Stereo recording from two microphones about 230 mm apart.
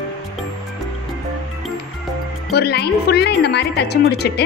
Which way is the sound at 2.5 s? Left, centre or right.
Left.